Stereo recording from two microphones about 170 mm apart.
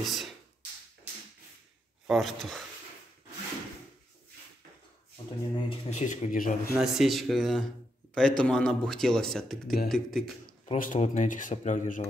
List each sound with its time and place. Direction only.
0.0 s beatboxing: centre (ahead or behind)
2.0 s speech: centre (ahead or behind)
5.7 s speech: 40° left (ahead or behind)
6.8 s speech: centre (ahead or behind)
10.6 s speech: 45° left (ahead or behind)